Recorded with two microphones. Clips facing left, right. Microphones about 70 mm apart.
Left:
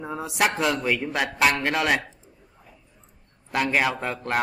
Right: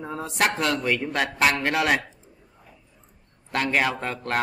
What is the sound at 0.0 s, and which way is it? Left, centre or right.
A man's voice, centre.